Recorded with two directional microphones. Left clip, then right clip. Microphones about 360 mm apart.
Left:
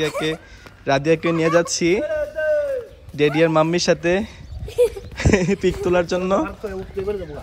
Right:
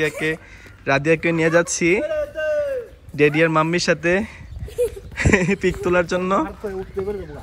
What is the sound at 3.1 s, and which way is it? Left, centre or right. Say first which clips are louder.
Speech: even; centre.